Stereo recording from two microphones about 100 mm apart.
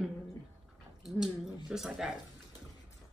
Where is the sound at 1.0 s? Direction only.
5° right (ahead or behind).